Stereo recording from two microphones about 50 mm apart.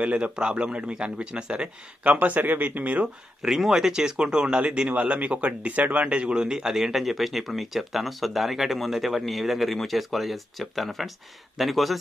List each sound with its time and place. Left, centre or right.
0.0 s a man's voice: right
2.1 s speech: right
3.4 s speech: centre